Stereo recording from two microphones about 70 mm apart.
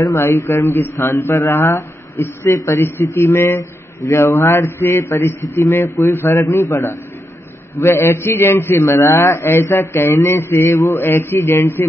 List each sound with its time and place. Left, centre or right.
0.1 s a man's voice: left
2.5 s a man's voice: left
2.8 s a man's voice: left